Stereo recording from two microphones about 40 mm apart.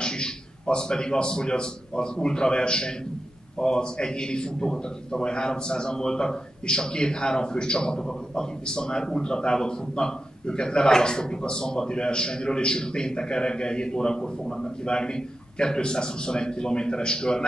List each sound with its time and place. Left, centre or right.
0.0 s a man's voice: left